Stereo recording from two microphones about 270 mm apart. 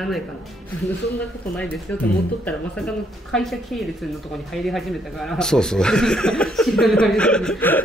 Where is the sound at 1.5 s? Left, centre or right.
Centre.